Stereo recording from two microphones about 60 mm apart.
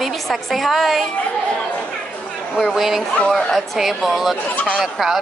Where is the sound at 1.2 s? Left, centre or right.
Centre.